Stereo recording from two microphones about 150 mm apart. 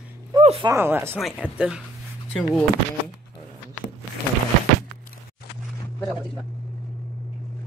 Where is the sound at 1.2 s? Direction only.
5° right (ahead or behind).